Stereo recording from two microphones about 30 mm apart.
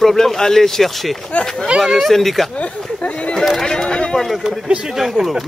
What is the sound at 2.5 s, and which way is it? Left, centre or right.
Speech, left.